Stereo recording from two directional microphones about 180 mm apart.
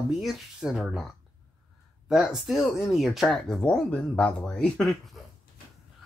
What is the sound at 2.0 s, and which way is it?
Speech, 5° right (ahead or behind).